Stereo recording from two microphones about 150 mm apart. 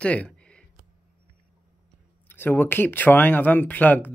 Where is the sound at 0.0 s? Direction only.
10° left (ahead or behind).